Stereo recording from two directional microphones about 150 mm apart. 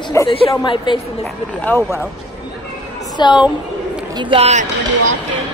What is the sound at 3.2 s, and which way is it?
Speech, 30° left (ahead or behind).